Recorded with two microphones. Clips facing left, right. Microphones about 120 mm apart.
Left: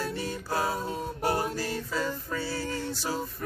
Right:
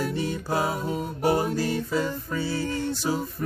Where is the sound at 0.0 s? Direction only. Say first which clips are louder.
Right 5 dB; 20° right (ahead or behind).